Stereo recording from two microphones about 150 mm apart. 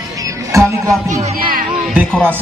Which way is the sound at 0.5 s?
20° right (ahead or behind).